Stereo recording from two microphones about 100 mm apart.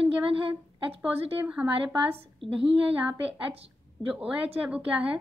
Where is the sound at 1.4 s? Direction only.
10° right (ahead or behind).